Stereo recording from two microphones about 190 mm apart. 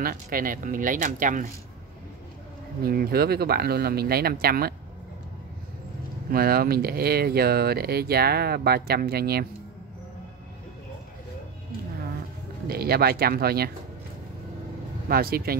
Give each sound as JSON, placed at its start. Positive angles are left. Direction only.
{"t": 0.0, "sound": "speech", "side_deg": -50}
{"t": 2.8, "sound": "speech", "side_deg": -50}
{"t": 6.3, "sound": "speech", "side_deg": -55}
{"t": 12.6, "sound": "speech", "side_deg": -55}
{"t": 15.0, "sound": "speech", "side_deg": -50}